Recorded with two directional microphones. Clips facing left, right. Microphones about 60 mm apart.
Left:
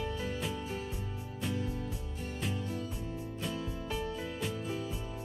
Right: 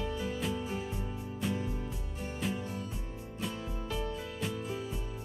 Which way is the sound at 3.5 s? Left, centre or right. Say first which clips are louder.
Left 1 dB; centre.